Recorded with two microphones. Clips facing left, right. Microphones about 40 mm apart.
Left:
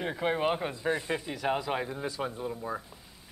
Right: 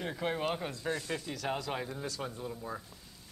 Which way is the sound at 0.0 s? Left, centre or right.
Centre.